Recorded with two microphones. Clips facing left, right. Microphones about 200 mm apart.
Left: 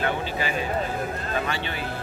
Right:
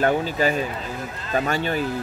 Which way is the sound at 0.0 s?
45° right (ahead or behind).